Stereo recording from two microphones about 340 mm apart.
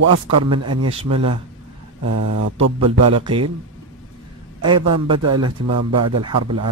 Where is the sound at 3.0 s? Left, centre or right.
Centre.